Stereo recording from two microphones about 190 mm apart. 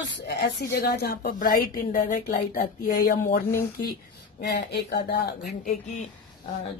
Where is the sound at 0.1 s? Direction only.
60° left (ahead or behind).